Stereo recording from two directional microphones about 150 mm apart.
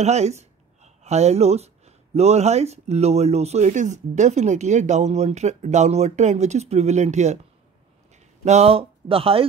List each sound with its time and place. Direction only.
0.0 s speech: 50° right (ahead or behind)
8.5 s speech: 45° right (ahead or behind)